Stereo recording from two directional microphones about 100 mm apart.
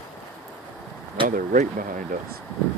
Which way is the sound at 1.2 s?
55° right (ahead or behind).